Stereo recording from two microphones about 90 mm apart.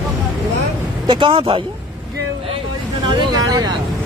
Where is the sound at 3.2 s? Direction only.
45° right (ahead or behind).